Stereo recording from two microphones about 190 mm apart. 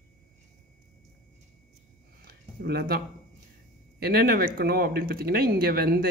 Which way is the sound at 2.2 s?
55° right (ahead or behind).